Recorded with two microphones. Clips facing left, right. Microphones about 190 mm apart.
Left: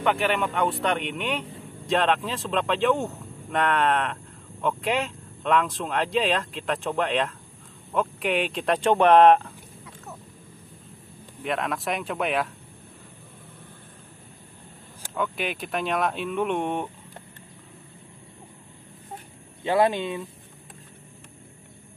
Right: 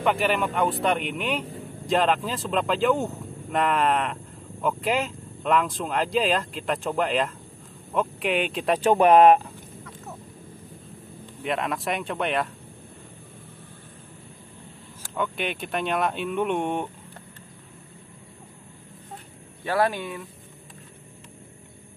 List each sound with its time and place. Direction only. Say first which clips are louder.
0.0 s speech: right 1 dB; centre (ahead or behind)
11.4 s speech: even; centre (ahead or behind)
15.1 s speech: even; centre (ahead or behind)
19.6 s speech: left 3 dB; 20° left (ahead or behind)